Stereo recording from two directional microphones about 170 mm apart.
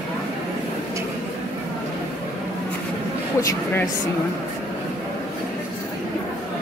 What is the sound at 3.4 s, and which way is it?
Speech, 20° left (ahead or behind).